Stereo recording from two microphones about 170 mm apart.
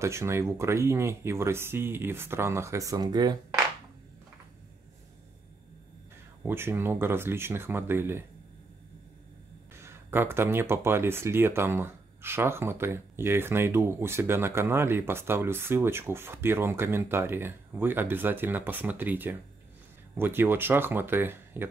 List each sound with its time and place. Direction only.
0.0 s speech: 15° right (ahead or behind)
6.4 s speech: 15° right (ahead or behind)
9.8 s speech: 15° right (ahead or behind)